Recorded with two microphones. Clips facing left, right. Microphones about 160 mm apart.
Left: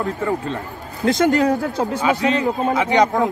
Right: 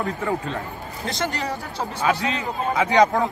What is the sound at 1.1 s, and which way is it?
Speech, 50° left (ahead or behind).